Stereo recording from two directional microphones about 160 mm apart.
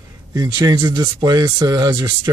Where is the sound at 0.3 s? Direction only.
25° right (ahead or behind).